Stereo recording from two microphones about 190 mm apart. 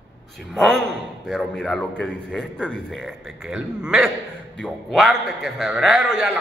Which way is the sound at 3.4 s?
5° right (ahead or behind).